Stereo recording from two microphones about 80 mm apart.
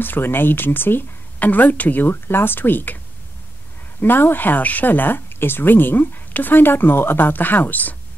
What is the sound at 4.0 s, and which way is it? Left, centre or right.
Speech, left.